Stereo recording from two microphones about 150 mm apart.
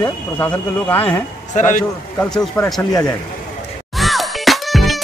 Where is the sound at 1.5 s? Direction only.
55° left (ahead or behind).